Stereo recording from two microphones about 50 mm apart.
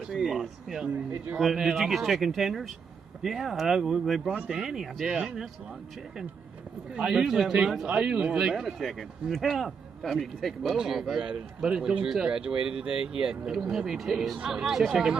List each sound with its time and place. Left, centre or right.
0.0 s speech: centre
0.8 s speech: right
1.8 s speech: centre
6.9 s speech: centre
11.2 s speech: centre